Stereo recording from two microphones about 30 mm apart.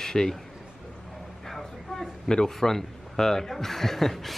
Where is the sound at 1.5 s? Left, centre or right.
Centre.